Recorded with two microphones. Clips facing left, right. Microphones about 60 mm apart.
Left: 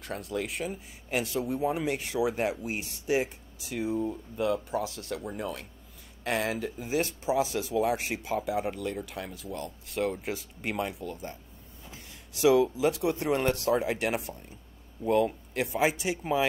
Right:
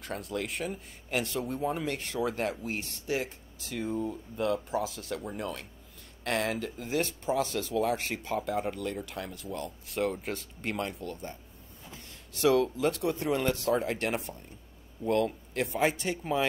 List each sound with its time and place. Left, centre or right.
0.0 s speech: centre
12.4 s speech: centre
13.2 s speech: left
13.7 s speech: centre